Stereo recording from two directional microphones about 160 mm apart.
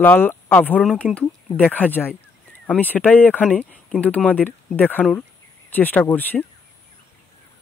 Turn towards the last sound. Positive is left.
turn(degrees=10)  # may be behind; listen again after turning